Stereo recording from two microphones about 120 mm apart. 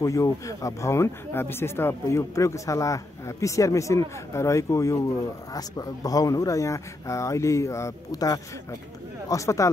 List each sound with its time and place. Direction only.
0.0 s speech: 25° left (ahead or behind)